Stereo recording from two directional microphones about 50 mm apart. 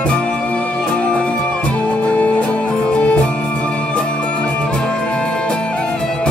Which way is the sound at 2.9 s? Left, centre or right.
Left.